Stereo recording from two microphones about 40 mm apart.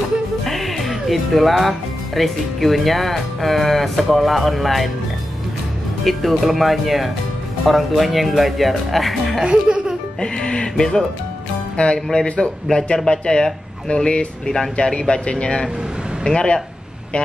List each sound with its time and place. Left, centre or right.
0.5 s speech: centre
6.0 s speech: centre
9.4 s speech: centre
10.2 s music: left